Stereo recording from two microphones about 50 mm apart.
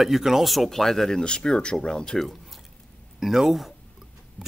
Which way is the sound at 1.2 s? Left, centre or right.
Centre.